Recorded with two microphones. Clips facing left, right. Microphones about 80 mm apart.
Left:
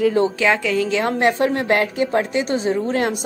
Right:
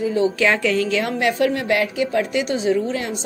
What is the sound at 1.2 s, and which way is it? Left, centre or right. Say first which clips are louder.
A woman's voice: left 1 dB; left.